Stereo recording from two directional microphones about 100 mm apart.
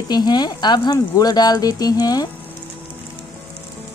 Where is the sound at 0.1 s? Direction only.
45° left (ahead or behind).